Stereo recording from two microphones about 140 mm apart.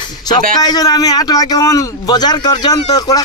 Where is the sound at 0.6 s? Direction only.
30° left (ahead or behind).